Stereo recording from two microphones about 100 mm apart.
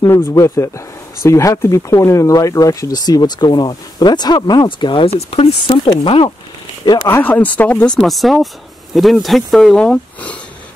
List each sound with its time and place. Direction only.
0.0 s speech: 30° left (ahead or behind); by 6.3 s 65° left (ahead or behind)
6.8 s speech: 45° left (ahead or behind)
7.1 s speech: 20° left (ahead or behind)
8.0 s speech: centre (ahead or behind)